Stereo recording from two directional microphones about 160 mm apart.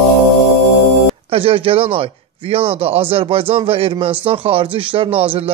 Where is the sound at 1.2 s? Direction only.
35° right (ahead or behind).